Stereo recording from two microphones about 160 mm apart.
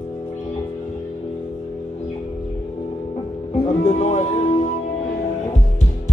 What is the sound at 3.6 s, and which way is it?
Music, 45° left (ahead or behind).